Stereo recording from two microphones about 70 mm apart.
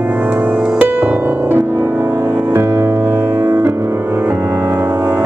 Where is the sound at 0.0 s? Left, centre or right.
Right.